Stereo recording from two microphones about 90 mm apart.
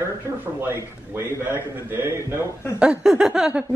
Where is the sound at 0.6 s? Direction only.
25° right (ahead or behind).